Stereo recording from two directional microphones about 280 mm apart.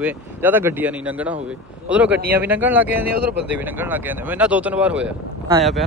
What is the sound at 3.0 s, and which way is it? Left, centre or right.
Speech, right.